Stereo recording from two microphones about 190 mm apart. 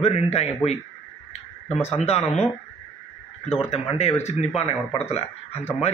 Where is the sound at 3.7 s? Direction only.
35° left (ahead or behind).